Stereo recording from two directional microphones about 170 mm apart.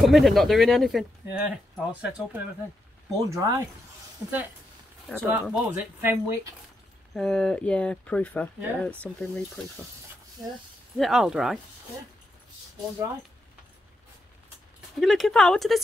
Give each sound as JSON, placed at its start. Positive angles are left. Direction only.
{"t": 0.0, "sound": "speech", "side_deg": 0}
{"t": 3.1, "sound": "speech", "side_deg": -20}
{"t": 5.2, "sound": "speech", "side_deg": -10}
{"t": 7.2, "sound": "speech", "side_deg": 5}
{"t": 11.0, "sound": "speech", "side_deg": 0}
{"t": 15.0, "sound": "speech", "side_deg": 0}